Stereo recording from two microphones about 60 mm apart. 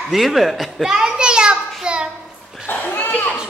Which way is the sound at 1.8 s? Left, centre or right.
Centre.